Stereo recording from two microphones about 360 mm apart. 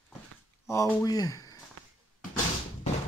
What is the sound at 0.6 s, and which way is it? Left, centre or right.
Speech, centre.